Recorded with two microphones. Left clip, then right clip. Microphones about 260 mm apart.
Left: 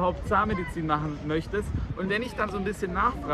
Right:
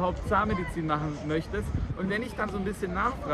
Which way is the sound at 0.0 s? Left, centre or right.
Centre.